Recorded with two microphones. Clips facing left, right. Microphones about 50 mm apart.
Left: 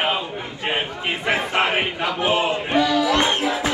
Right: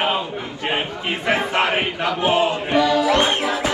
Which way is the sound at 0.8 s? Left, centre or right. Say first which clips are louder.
Right 1 dB; centre.